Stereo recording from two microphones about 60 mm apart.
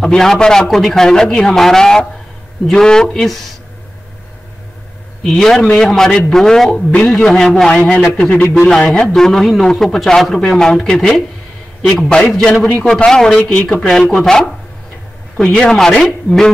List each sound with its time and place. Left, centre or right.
0.0 s a man's voice: centre
5.2 s a man's voice: centre
8.4 s a man's voice: left
8.6 s a man's voice: centre
12.0 s a man's voice: left
13.0 s a man's voice: centre